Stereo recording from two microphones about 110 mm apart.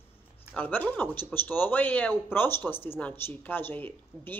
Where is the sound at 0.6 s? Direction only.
15° left (ahead or behind).